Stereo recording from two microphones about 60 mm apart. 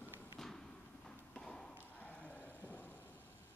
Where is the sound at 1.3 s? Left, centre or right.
Centre.